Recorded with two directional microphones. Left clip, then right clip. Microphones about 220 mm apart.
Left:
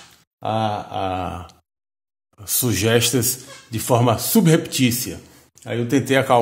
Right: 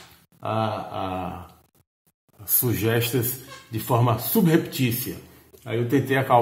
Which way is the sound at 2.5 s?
45° left (ahead or behind).